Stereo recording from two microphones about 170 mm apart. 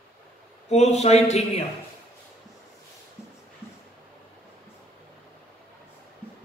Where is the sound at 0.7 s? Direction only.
40° left (ahead or behind).